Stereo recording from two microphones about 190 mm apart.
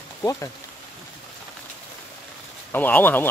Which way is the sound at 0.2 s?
15° left (ahead or behind).